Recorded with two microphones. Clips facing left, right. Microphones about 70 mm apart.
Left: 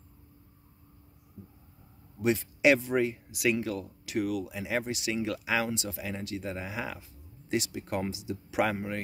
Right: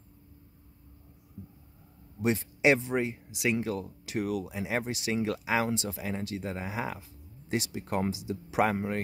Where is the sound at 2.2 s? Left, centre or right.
Right.